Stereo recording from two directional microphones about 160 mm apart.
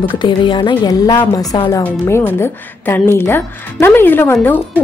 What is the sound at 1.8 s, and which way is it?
A woman's voice, 15° left (ahead or behind).